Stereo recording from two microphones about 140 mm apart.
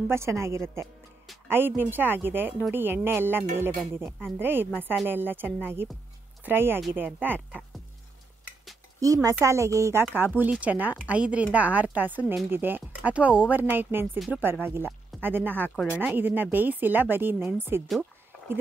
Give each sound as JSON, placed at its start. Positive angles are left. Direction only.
{"t": 0.1, "sound": "speech", "side_deg": -20}
{"t": 9.0, "sound": "speech", "side_deg": -25}
{"t": 14.1, "sound": "speech", "side_deg": 0}
{"t": 14.4, "sound": "speech", "side_deg": -15}